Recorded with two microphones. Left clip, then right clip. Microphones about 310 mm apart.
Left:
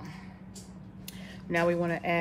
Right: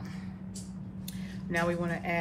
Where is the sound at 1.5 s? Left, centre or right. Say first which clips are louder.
Left 4 dB; left.